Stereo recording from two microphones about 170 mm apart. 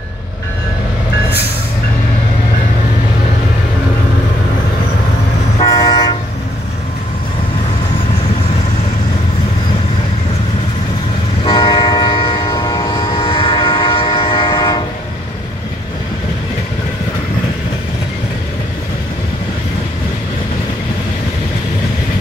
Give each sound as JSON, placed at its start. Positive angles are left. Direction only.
{"t": 5.6, "sound": "train", "side_deg": 25}
{"t": 11.4, "sound": "train", "side_deg": 25}